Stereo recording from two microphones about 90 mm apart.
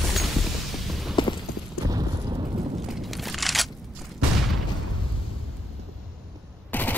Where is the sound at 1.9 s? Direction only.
50° right (ahead or behind).